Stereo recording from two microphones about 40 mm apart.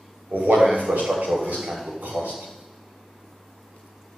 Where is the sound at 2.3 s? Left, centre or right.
Centre.